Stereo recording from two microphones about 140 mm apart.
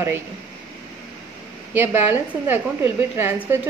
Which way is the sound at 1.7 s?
15° right (ahead or behind).